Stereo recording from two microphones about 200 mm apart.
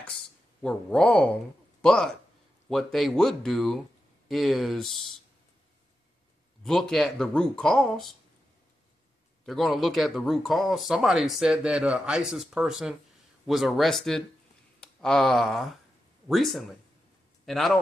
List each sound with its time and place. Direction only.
0.0 s speech: 5° left (ahead or behind)
6.6 s speech: centre (ahead or behind)
9.5 s speech: centre (ahead or behind)